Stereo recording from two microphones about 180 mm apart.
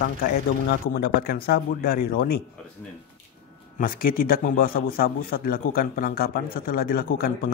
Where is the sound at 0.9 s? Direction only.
55° left (ahead or behind).